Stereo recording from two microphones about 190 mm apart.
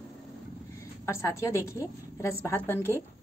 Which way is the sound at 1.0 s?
15° left (ahead or behind).